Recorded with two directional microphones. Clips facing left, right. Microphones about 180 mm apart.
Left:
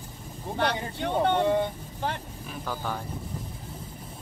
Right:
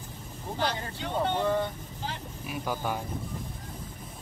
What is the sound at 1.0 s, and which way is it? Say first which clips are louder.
Speech: left 5 dB; 60° left (ahead or behind).